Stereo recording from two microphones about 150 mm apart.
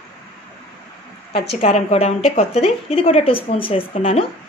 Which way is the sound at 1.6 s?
45° left (ahead or behind).